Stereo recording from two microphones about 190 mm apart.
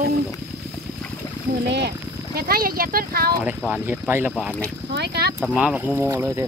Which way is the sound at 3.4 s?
10° right (ahead or behind).